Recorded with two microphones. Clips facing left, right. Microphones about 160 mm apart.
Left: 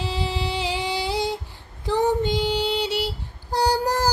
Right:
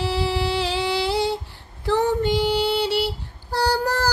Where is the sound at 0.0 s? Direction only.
15° left (ahead or behind).